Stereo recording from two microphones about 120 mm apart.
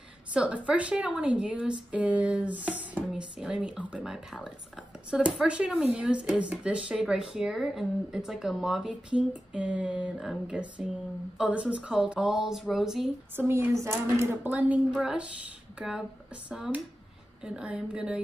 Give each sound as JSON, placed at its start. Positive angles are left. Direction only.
{"t": 0.3, "sound": "speech", "side_deg": -10}
{"t": 13.4, "sound": "speech", "side_deg": -20}